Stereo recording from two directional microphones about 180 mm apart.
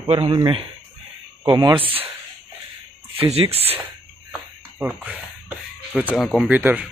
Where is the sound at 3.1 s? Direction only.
30° right (ahead or behind).